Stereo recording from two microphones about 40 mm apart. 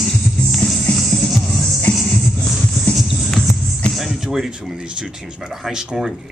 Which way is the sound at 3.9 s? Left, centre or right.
Centre.